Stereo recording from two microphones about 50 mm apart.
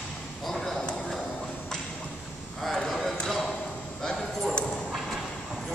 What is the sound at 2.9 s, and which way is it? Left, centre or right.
Basketball bounce, centre.